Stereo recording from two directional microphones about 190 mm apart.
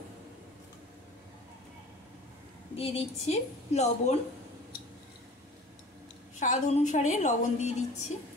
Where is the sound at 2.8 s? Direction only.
35° left (ahead or behind).